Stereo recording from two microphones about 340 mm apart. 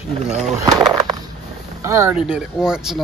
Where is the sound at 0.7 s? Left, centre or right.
Centre.